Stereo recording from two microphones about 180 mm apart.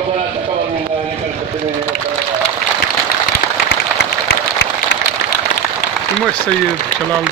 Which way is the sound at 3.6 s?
70° left (ahead or behind).